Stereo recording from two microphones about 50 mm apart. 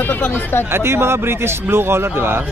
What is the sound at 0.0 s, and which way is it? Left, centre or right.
Speech, left.